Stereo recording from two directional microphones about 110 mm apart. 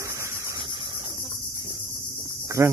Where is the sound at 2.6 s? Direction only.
25° right (ahead or behind).